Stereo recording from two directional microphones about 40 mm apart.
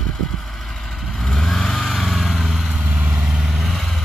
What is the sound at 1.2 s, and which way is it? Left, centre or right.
Vehicle, centre.